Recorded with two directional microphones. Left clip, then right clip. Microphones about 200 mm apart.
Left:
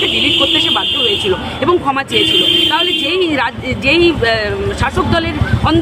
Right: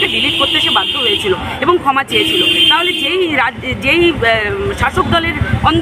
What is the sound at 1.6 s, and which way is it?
Speech, 10° left (ahead or behind).